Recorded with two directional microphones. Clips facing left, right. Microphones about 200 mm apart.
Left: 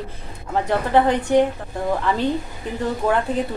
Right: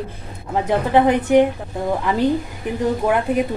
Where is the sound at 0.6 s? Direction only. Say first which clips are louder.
Right 2 dB; 15° right (ahead or behind).